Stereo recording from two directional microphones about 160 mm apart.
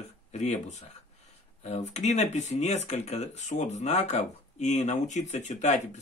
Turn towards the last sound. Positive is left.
turn(degrees=45)  # may be behind; listen again after turning